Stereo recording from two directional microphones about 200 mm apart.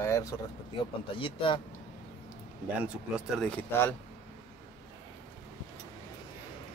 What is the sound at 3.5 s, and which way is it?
Speech, 10° left (ahead or behind).